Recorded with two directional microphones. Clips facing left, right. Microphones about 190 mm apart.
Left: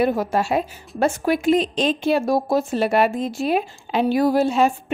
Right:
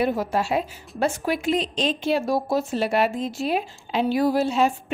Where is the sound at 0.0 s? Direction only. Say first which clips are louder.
Left 3 dB; 50° left (ahead or behind).